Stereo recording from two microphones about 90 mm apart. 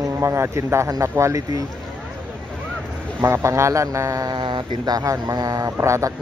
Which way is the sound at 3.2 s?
30° right (ahead or behind).